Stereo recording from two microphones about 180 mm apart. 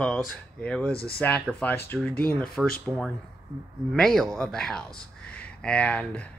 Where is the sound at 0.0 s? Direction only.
5° left (ahead or behind).